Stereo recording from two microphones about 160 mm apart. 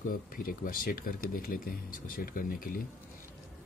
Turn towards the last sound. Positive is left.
turn(degrees=60)  # may be behind; listen again after turning